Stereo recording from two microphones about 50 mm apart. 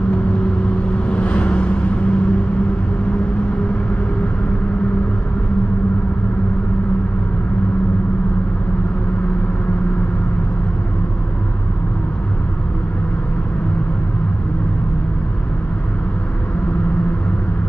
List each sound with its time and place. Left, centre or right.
1.0 s vehicle: left